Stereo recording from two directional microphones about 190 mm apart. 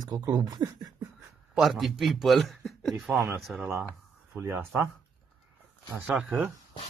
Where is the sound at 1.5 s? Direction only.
Centre (ahead or behind).